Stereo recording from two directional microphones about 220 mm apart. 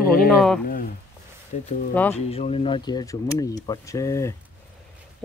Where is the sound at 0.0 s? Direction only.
40° left (ahead or behind).